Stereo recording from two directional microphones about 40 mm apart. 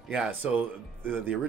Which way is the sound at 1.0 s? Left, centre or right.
Right.